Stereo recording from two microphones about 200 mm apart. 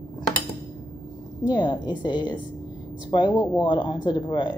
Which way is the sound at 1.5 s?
20° left (ahead or behind).